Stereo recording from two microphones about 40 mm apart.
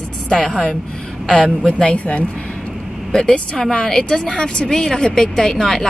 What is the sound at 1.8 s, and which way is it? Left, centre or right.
Speech, left.